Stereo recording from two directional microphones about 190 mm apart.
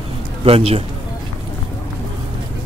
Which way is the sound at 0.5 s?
30° right (ahead or behind).